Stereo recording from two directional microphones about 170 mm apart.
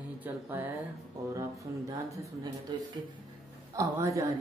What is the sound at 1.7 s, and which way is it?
A man's voice, 20° right (ahead or behind).